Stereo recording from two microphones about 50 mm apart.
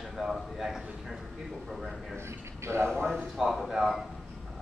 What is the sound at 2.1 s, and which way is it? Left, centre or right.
Speech, right.